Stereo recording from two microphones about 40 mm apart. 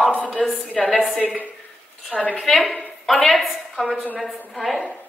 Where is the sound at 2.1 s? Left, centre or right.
Left.